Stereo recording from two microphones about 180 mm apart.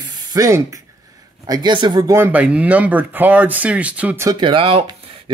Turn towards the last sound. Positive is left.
turn(degrees=-30)  # may be behind; listen again after turning